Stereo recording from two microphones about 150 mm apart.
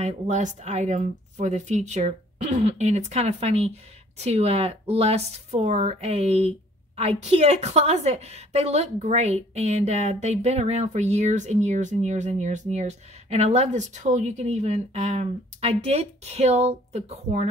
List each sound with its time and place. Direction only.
0.0 s a woman's voice: 50° right (ahead or behind)